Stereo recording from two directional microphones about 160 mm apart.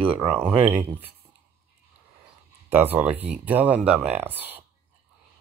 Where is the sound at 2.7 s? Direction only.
10° right (ahead or behind).